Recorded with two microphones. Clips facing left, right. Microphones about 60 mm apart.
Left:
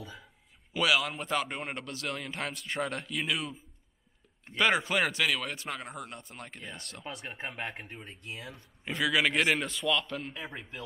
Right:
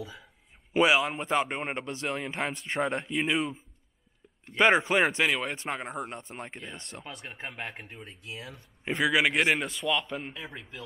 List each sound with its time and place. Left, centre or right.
0.0 s a man's voice: centre
0.7 s a man's voice: right
4.6 s a man's voice: right
7.4 s speech: centre
8.8 s a man's voice: right
10.3 s speech: centre